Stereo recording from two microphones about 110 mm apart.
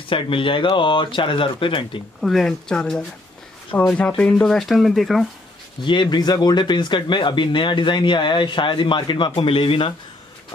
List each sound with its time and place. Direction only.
0.1 s speech: 50° left (ahead or behind)
2.2 s speech: 5° left (ahead or behind)
5.9 s speech: 40° left (ahead or behind)